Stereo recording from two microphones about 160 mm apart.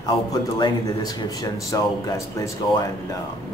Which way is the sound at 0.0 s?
25° left (ahead or behind).